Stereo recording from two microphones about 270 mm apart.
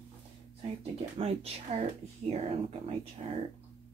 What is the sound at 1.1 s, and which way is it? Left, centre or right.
Speech, right.